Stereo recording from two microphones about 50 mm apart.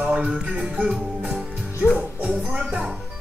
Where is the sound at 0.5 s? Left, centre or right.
Centre.